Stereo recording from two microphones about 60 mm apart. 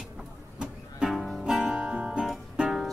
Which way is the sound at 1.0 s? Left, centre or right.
Centre.